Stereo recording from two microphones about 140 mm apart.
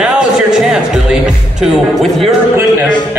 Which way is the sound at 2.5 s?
15° right (ahead or behind).